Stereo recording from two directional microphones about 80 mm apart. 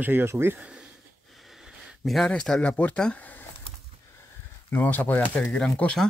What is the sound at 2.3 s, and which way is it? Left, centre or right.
Speech, centre.